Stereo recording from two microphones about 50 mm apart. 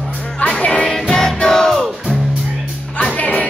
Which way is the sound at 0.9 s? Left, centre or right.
Centre.